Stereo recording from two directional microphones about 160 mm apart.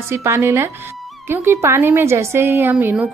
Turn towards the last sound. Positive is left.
turn(degrees=-10)  # may be behind; listen again after turning